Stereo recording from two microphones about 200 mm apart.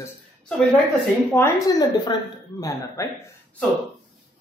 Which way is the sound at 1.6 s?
20° left (ahead or behind).